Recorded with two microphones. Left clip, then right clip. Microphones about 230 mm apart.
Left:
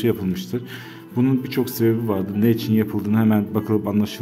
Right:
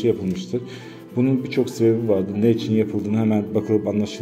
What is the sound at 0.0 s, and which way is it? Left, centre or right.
A man's voice, left.